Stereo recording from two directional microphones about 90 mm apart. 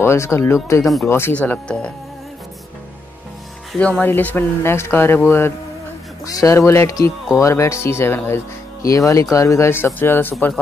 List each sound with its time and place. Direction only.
0.0 s speech: 30° left (ahead or behind)
1.3 s speech: 15° left (ahead or behind)
3.7 s speech: 10° left (ahead or behind)
6.2 s speech: 40° left (ahead or behind)